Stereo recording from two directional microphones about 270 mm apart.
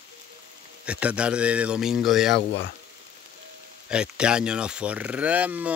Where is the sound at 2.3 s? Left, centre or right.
Left.